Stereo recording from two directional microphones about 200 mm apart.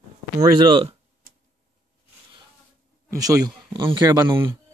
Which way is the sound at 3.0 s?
15° right (ahead or behind).